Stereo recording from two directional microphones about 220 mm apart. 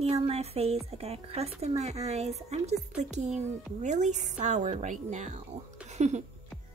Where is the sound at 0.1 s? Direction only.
30° right (ahead or behind).